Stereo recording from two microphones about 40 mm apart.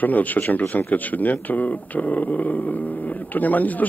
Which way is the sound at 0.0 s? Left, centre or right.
Left.